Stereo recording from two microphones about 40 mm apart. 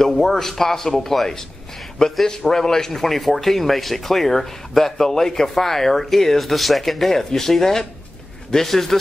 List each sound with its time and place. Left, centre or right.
0.0 s speech: centre